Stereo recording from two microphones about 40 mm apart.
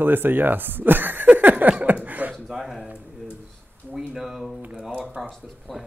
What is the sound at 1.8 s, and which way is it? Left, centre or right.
Chuckle, right.